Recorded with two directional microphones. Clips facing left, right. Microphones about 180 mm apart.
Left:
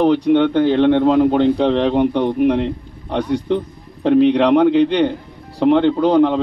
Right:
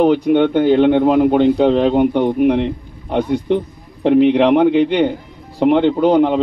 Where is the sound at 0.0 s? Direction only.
15° right (ahead or behind).